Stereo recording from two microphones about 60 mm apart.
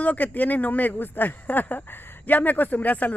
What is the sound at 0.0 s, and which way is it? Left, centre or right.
Speech, left.